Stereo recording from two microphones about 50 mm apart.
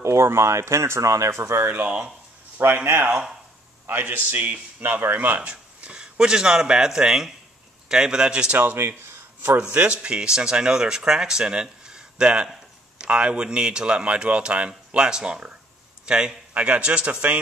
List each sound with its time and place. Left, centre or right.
0.0 s speech: right
2.6 s a man's voice: right
5.4 s speech: right
9.6 s speech: right
16.5 s speech: right